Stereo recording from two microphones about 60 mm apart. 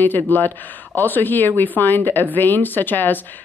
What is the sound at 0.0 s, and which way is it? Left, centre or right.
Speech, left.